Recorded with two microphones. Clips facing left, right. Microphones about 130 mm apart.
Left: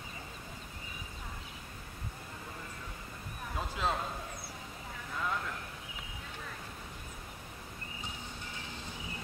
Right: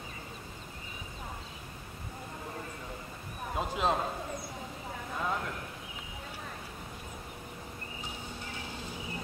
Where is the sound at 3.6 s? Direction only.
20° right (ahead or behind).